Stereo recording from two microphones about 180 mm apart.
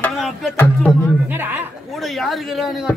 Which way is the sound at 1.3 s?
10° right (ahead or behind).